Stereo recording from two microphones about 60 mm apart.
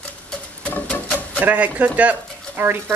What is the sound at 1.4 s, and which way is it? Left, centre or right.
Speech, right.